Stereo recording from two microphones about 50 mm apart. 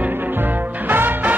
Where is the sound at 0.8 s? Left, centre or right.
Right.